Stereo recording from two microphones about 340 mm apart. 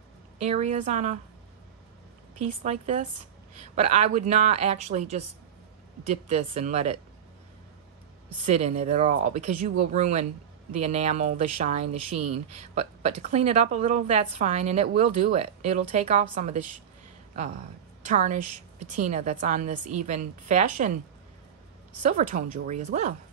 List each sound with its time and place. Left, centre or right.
0.4 s speech: centre
2.4 s speech: right
6.2 s speech: centre
8.5 s speech: centre
18.0 s speech: right
22.0 s speech: right